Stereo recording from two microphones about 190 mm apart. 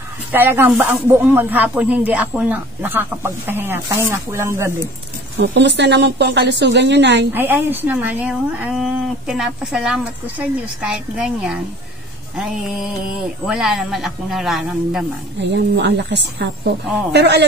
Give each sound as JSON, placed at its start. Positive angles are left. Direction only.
{"t": 0.3, "sound": "speech", "side_deg": -10}
{"t": 5.4, "sound": "a woman's voice", "side_deg": -65}
{"t": 7.3, "sound": "speech", "side_deg": -10}
{"t": 15.5, "sound": "a woman's voice", "side_deg": -65}